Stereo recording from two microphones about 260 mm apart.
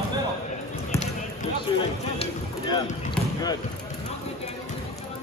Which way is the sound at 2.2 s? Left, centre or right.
Centre.